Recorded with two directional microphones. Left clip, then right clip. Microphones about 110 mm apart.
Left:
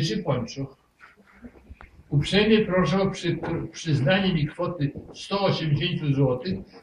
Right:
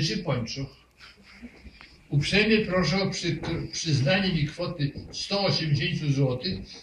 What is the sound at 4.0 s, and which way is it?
A man's voice, 20° right (ahead or behind).